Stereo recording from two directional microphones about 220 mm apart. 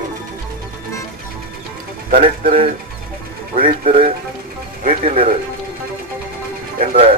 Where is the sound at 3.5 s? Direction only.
25° right (ahead or behind).